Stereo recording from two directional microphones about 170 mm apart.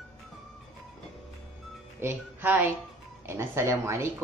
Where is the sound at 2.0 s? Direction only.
10° right (ahead or behind).